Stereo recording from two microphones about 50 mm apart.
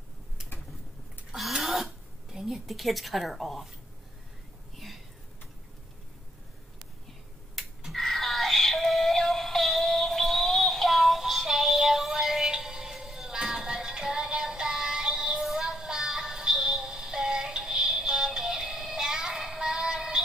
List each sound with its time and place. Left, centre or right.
1.3 s a sound: centre
2.7 s a woman's voice: centre
4.7 s a sound: centre
7.6 s finger snapping: centre
7.9 s synthetic singing: centre
15.4 s music: centre